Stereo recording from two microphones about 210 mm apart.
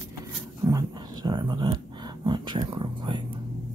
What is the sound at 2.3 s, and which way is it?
Speech, 20° right (ahead or behind).